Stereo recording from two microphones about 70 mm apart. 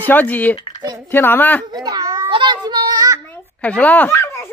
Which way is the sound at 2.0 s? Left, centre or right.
Right.